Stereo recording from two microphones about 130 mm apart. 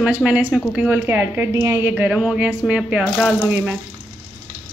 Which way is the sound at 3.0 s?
5° left (ahead or behind).